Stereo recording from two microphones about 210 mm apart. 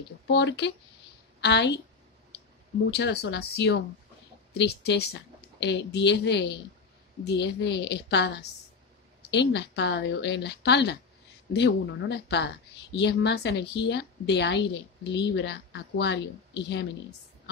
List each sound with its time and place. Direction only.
0.3 s a woman's voice: 55° left (ahead or behind)
2.9 s a woman's voice: 50° left (ahead or behind)